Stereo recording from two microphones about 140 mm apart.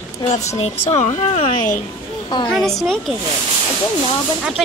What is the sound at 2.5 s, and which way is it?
Speech, centre (ahead or behind).